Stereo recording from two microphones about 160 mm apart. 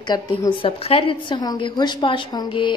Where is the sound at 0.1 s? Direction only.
30° left (ahead or behind).